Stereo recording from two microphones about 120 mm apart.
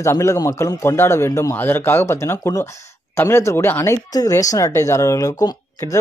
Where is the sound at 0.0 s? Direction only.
25° left (ahead or behind).